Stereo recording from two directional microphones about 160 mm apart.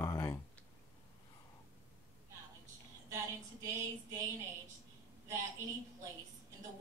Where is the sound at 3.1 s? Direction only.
20° right (ahead or behind).